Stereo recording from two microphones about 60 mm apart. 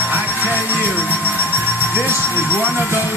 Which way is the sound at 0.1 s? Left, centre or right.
Right.